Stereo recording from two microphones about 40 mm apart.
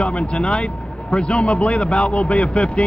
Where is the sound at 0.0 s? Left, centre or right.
Left.